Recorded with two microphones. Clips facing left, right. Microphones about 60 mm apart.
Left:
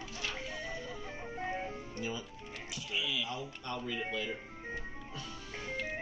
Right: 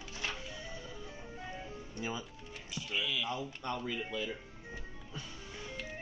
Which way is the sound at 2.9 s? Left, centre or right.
Centre.